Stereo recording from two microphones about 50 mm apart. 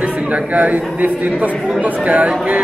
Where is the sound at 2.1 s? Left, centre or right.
Right.